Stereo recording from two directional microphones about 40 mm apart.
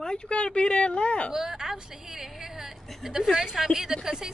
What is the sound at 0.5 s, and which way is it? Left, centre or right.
Speech, left.